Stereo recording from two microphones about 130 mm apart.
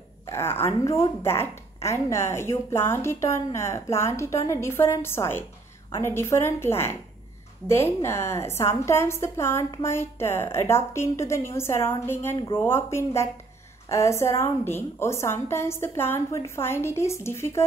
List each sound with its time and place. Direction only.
0.3 s a woman's voice: 20° left (ahead or behind)